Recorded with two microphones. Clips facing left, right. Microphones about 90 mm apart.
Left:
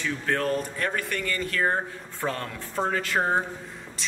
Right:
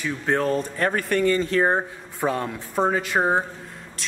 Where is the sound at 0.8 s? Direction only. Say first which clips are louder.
Right 8 dB; 40° right (ahead or behind); by 3.4 s 15° right (ahead or behind).